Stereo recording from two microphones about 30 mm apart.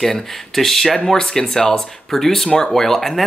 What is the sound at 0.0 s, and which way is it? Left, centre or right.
Speech, centre.